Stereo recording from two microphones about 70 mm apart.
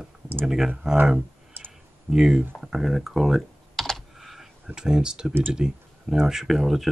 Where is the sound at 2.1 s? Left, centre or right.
Centre.